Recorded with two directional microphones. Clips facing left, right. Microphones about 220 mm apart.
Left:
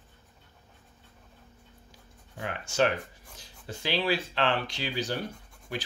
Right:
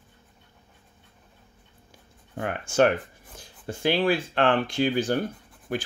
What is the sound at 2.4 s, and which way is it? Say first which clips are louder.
Speech: right 5 dB; 55° right (ahead or behind).